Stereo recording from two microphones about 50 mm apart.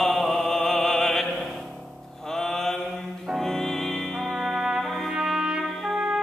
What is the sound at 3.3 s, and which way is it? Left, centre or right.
Music, centre.